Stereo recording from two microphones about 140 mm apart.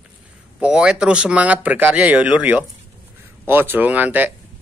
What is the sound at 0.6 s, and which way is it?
A man's voice, 5° right (ahead or behind).